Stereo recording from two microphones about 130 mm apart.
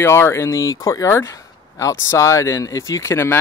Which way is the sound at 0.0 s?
20° left (ahead or behind).